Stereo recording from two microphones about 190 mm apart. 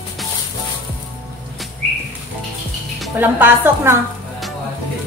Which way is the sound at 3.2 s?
10° right (ahead or behind).